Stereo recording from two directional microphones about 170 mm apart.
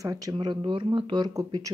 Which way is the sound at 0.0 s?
20° right (ahead or behind).